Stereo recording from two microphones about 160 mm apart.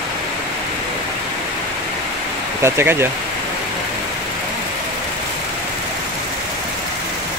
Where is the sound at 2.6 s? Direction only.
15° right (ahead or behind).